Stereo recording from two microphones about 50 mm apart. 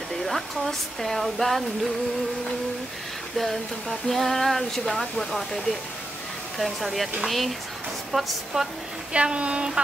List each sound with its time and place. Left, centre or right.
0.1 s speech: centre
3.3 s speech: centre
9.1 s speech: right